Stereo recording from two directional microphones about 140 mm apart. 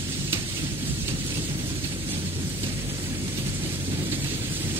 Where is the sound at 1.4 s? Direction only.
40° right (ahead or behind).